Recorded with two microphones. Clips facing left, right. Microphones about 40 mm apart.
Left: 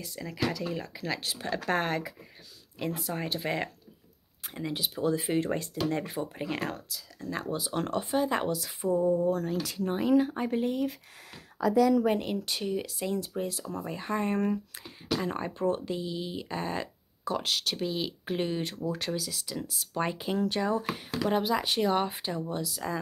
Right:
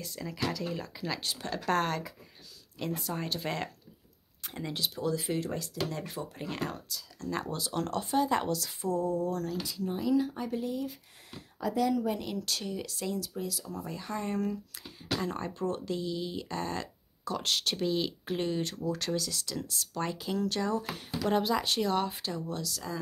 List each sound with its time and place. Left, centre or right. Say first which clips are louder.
0.0 s speech: left 2 dB; centre
5.0 s speech: left 5 dB; left
6.0 s speech: left 4 dB; centre
6.7 s speech: left 2 dB; centre
7.7 s speech: even; left
9.8 s speech: left 4 dB; left
12.2 s speech: left 3 dB; left
13.1 s speech: left 5 dB; left
13.7 s speech: left 6 dB; left
15.1 s speech: left 2 dB; centre
17.5 s speech: right 1 dB; centre; by 20.9 s left
21.3 s speech: even; centre